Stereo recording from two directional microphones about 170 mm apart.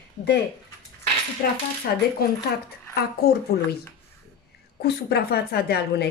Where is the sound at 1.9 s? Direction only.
65° left (ahead or behind).